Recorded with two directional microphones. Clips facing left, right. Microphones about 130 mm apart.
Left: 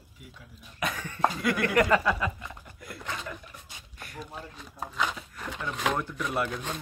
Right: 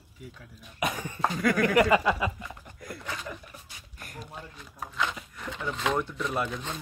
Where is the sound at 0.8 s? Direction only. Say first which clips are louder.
Right 2 dB; 15° right (ahead or behind).